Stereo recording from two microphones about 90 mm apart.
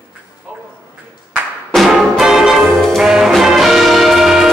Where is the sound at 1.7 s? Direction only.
Centre (ahead or behind).